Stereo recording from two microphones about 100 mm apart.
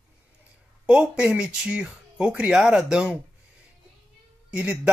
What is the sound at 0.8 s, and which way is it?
Speech, 10° right (ahead or behind).